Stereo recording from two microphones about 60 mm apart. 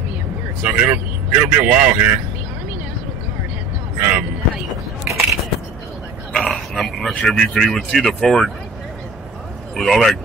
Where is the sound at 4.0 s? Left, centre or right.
Right.